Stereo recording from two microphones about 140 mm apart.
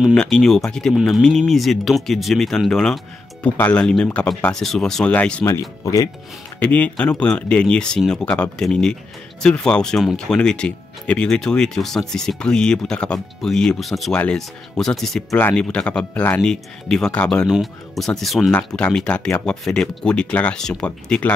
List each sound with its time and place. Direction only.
0.1 s speech: 5° left (ahead or behind)
5.4 s speech: 20° left (ahead or behind)
6.6 s speech: 10° left (ahead or behind)